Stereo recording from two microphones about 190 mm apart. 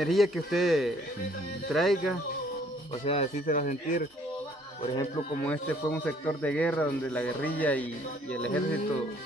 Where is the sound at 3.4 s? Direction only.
45° left (ahead or behind).